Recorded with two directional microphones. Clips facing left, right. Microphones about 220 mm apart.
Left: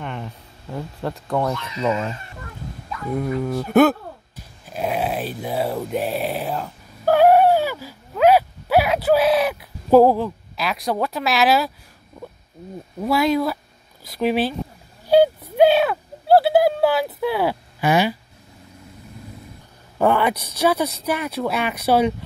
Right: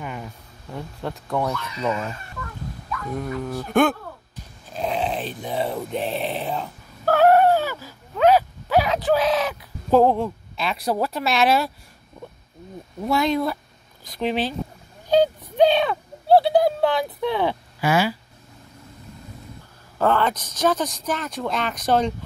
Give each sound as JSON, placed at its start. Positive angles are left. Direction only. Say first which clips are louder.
{"t": 0.0, "sound": "a sound", "louder": "left 2 dB", "side_deg": -5}
{"t": 0.7, "sound": "speech", "louder": "left 3 dB", "side_deg": 0}
{"t": 1.5, "sound": "speech", "louder": "left 3 dB", "side_deg": 25}
{"t": 3.4, "sound": "speech", "louder": "left 4 dB", "side_deg": 5}
{"t": 7.1, "sound": "a sound", "louder": "left 2 dB", "side_deg": 10}
{"t": 13.0, "sound": "speech", "louder": "left 2 dB", "side_deg": 5}
{"t": 15.0, "sound": "a sound", "louder": "left 3 dB", "side_deg": 10}
{"t": 17.8, "sound": "speech", "louder": "left 2 dB", "side_deg": 20}
{"t": 20.0, "sound": "speech", "louder": "left 2 dB", "side_deg": 10}